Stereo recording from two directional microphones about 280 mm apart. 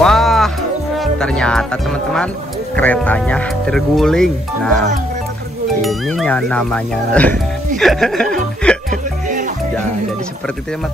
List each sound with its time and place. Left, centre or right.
0.0 s music: centre
1.0 s speech: centre
8.9 s music: right